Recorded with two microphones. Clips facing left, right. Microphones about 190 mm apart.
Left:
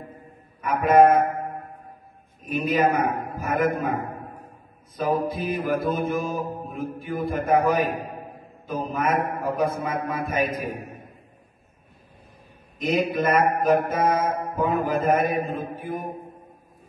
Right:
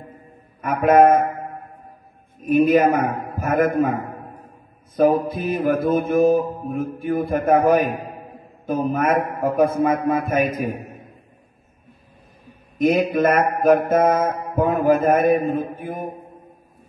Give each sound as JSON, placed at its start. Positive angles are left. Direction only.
{"t": 0.6, "sound": "mantra", "side_deg": -50}
{"t": 2.4, "sound": "mantra", "side_deg": -50}
{"t": 4.9, "sound": "mantra", "side_deg": -55}
{"t": 12.7, "sound": "a man's voice", "side_deg": -55}
{"t": 13.1, "sound": "mantra", "side_deg": -50}